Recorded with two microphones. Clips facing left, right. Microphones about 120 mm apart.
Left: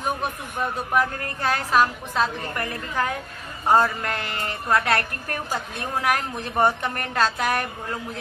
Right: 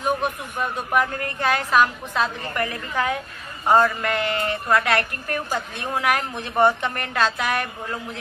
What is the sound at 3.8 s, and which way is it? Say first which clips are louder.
Speech: right 3 dB; 35° left (ahead or behind).